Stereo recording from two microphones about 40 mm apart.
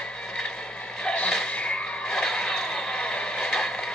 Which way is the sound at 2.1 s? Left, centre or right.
Centre.